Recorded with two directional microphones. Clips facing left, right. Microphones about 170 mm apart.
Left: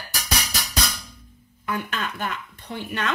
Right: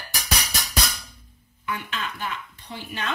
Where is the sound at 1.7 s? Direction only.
55° left (ahead or behind).